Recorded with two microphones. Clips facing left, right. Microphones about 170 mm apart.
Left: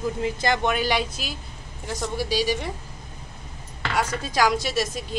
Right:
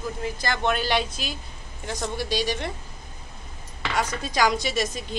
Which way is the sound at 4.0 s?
5° left (ahead or behind).